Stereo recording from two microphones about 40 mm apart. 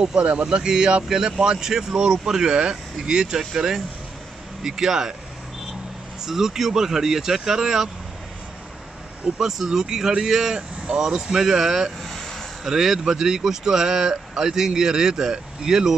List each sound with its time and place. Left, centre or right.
0.0 s a man's voice: right
6.2 s speech: centre
9.4 s speech: centre
12.0 s vehicle: centre
12.6 s speech: centre